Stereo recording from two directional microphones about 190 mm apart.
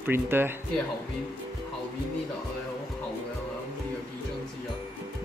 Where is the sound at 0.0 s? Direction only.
10° right (ahead or behind).